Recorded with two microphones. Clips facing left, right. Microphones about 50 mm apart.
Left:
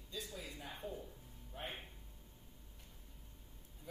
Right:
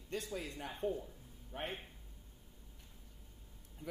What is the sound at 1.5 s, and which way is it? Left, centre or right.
Speech, right.